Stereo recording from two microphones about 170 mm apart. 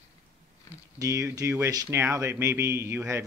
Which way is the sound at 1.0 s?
20° right (ahead or behind).